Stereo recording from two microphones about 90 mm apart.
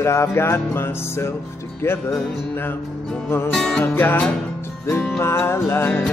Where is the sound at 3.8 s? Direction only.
25° left (ahead or behind).